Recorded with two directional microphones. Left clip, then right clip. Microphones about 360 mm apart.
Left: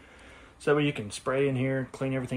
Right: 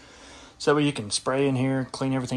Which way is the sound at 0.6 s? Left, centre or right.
Centre.